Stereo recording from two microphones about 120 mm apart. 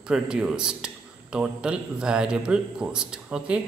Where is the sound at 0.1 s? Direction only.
5° right (ahead or behind).